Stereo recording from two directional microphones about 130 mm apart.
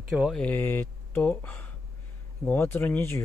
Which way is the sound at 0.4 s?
15° left (ahead or behind).